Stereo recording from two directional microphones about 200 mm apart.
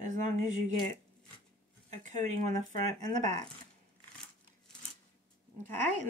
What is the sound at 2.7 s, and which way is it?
Speech, 35° right (ahead or behind).